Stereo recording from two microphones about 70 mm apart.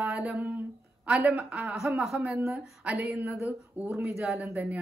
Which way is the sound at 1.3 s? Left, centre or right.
Centre.